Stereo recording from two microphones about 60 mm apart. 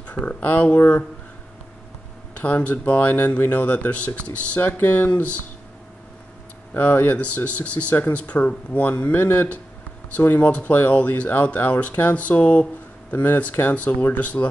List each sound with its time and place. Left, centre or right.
0.0 s speech: left
2.3 s speech: left
4.6 s speech: left
6.7 s speech: left